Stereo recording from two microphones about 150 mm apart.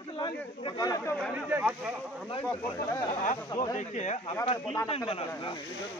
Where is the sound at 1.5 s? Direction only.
10° right (ahead or behind).